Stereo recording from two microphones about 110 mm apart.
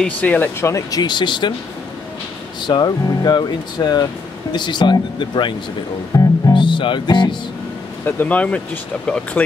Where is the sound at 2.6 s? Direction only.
40° left (ahead or behind).